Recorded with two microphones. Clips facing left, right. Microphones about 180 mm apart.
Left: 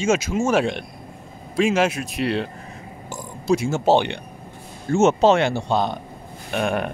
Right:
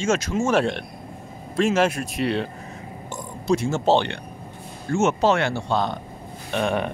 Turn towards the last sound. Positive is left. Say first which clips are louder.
# even
turn(degrees=5)  # may be behind; listen again after turning